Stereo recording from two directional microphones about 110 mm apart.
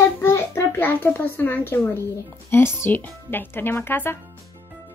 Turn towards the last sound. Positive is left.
turn(degrees=20)  # may be behind; listen again after turning